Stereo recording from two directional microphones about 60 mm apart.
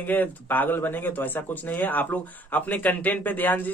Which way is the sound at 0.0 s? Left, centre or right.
Left.